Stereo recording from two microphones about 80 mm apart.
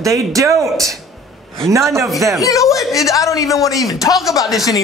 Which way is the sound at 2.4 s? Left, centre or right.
Left.